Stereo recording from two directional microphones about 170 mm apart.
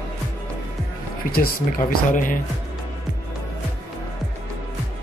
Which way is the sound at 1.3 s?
60° left (ahead or behind).